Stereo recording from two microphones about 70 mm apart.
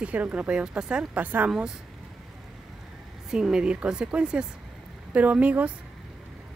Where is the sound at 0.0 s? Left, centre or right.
Right.